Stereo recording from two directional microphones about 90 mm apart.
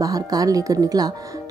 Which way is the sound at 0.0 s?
40° right (ahead or behind).